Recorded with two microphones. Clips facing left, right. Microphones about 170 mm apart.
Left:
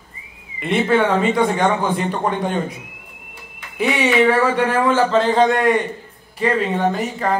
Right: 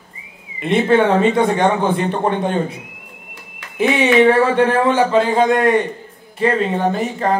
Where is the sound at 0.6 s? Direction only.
20° right (ahead or behind).